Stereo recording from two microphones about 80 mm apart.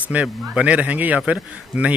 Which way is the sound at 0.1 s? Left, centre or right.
Centre.